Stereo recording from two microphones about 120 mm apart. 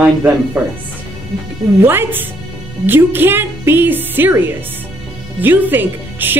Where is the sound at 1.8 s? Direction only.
20° right (ahead or behind).